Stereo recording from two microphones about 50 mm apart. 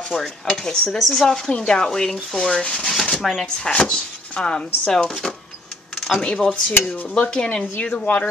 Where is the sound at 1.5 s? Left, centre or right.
Centre.